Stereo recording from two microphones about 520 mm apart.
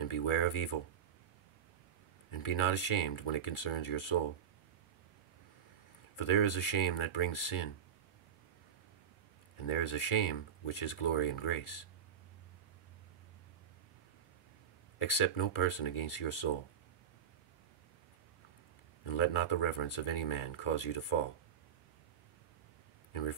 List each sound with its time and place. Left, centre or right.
0.0 s speech: left
2.3 s speech: left
6.1 s speech: left
9.7 s speech: left
15.0 s speech: left
19.0 s speech: left